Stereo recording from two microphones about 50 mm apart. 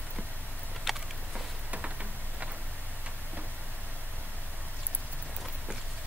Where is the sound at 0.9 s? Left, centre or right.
Centre.